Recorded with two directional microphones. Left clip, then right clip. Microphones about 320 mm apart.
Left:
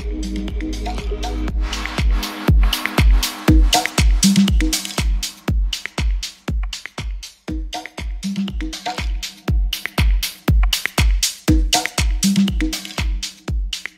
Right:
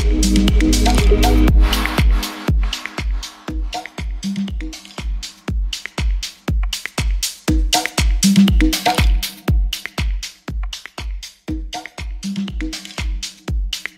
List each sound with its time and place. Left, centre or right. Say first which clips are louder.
0.0 s music: right 10 dB; right; by 3.7 s left
3.7 s music: left 10 dB; left
5.7 s music: even; centre
6.7 s music: right 8 dB; right
7.2 s music: right 9 dB; right; by 9.3 s centre
9.5 s music: even; centre
10.2 s music: left 7 dB; left
11.1 s music: left 10 dB; left; by 13.3 s centre
13.5 s music: right 1 dB; centre